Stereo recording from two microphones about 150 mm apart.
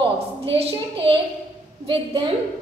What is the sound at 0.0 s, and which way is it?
A woman's voice, 40° right (ahead or behind).